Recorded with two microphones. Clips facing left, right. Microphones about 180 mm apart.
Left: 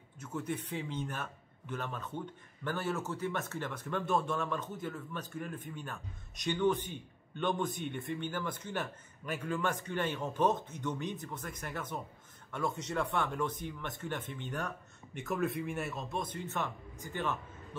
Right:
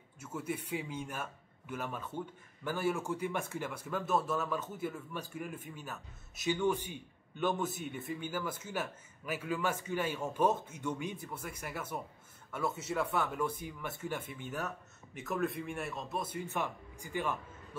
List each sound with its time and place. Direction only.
0.2 s a man's voice: 10° right (ahead or behind)